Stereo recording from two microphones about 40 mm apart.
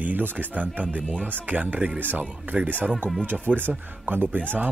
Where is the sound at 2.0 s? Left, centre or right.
Right.